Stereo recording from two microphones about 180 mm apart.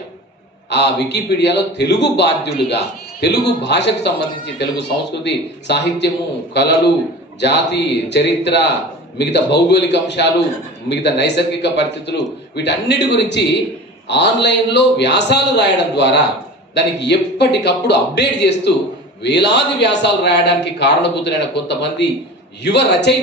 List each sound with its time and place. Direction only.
0.7 s a man's voice: 75° left (ahead or behind)
7.3 s a man's voice: 70° left (ahead or behind)